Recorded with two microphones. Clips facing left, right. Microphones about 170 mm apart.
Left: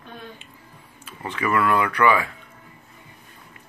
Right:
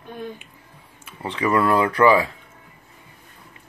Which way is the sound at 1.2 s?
20° right (ahead or behind).